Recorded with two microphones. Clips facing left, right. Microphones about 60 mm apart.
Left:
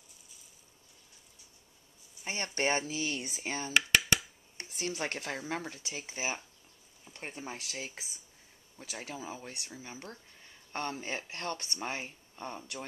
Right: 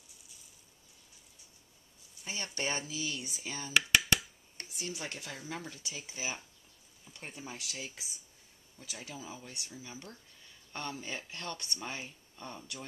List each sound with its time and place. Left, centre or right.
2.2 s speech: left
3.7 s a sound: centre
4.6 s speech: left